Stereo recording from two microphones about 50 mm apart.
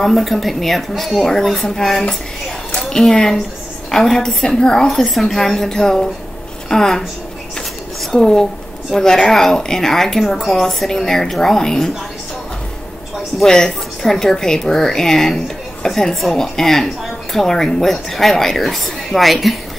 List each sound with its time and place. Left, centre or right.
0.0 s a woman's voice: centre
4.4 s a woman's voice: centre
8.1 s a woman's voice: centre
13.4 s a woman's voice: centre